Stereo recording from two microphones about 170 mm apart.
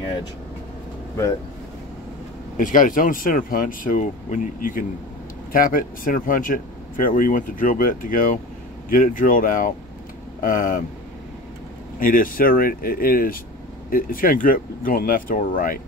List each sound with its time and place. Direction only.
2.5 s speech: 50° left (ahead or behind)
12.0 s speech: 55° left (ahead or behind)